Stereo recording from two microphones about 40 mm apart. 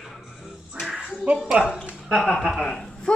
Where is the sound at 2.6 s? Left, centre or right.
Centre.